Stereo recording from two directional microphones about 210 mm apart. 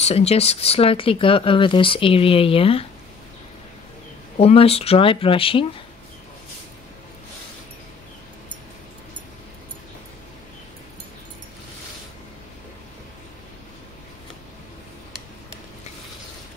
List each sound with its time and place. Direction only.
0.0 s speech: 30° left (ahead or behind)
4.4 s speech: 30° left (ahead or behind)